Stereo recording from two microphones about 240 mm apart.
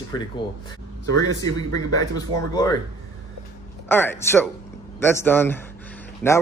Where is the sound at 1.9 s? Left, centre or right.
Centre.